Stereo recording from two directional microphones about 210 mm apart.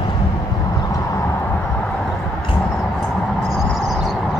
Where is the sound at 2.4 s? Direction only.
25° left (ahead or behind).